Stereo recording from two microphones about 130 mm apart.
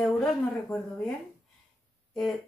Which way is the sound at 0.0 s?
5° left (ahead or behind).